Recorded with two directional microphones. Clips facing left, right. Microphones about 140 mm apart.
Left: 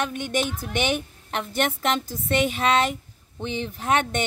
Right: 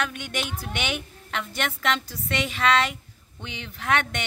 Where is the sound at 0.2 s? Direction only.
45° left (ahead or behind).